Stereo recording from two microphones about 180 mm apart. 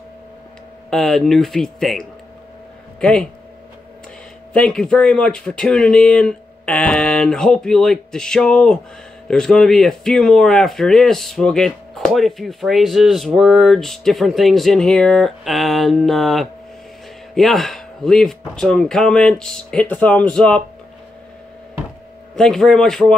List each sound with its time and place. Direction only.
0.8 s speech: 5° left (ahead or behind)
4.6 s speech: 5° left (ahead or behind)
22.3 s speech: 5° left (ahead or behind)